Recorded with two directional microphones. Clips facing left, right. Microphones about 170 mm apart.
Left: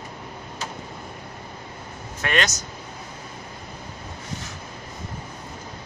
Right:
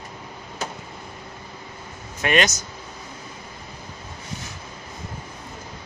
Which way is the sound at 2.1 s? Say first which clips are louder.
Right 4 dB; 15° right (ahead or behind).